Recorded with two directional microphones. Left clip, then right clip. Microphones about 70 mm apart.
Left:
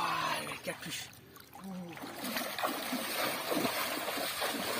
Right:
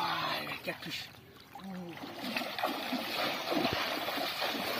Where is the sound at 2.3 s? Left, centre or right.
Left.